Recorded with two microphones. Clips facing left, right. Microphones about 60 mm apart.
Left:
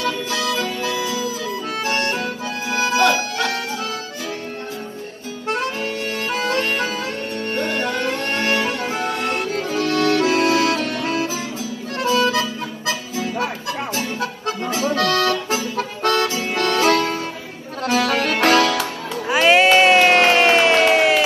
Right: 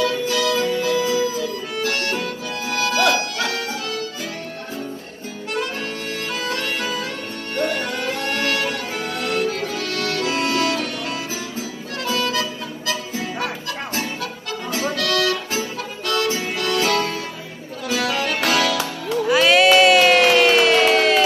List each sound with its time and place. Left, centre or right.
0.4 s music: right
1.8 s accordion: left
6.3 s music: left
15.0 s accordion: left
16.5 s music: left
19.2 s crowd: left